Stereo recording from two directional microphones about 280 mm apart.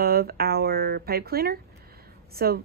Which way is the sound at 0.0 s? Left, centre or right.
Right.